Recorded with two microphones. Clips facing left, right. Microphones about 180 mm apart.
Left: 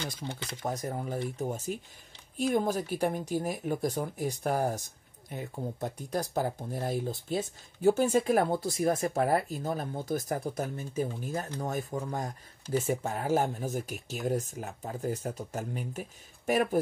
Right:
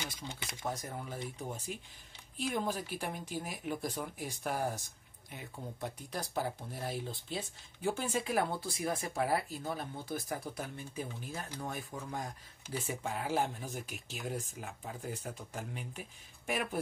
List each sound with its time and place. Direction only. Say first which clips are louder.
0.7 s speech: left 6 dB; 40° left (ahead or behind)